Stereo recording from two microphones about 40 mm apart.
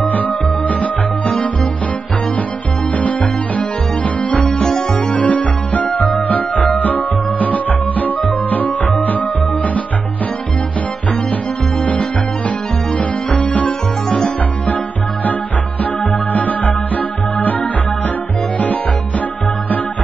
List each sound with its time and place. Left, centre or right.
0.0 s music: left
3.0 s music: left
11.8 s music: left
13.7 s music: left
15.8 s music: left